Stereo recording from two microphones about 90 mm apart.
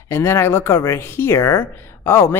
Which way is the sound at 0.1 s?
30° left (ahead or behind).